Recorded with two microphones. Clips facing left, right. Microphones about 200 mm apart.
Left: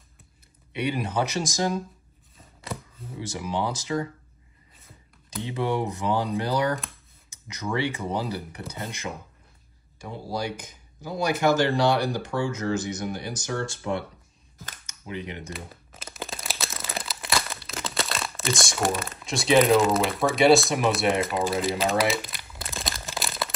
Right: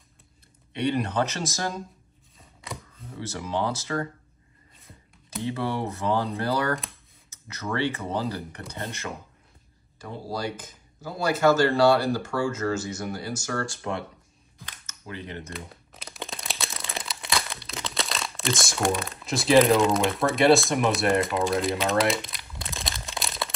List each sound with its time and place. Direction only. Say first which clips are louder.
0.7 s speech: right 1 dB; 5° left (ahead or behind)
2.6 s a sound: left 3 dB; centre (ahead or behind)
3.2 s speech: even; 15° left (ahead or behind)
5.4 s speech: left 2 dB; 15° left (ahead or behind)
9.9 s speech: left 1 dB; 15° left (ahead or behind)
14.9 s speech: left 3 dB; 15° left (ahead or behind)
15.5 s crumpling: even; centre (ahead or behind)